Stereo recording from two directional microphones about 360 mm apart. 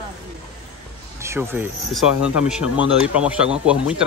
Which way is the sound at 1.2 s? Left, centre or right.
Centre.